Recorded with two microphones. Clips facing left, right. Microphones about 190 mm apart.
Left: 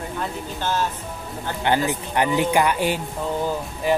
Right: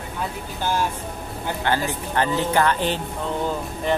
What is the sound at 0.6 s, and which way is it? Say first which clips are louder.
Speech: right 1 dB; 10° right (ahead or behind).